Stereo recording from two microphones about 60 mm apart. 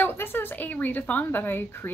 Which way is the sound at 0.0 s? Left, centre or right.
Left.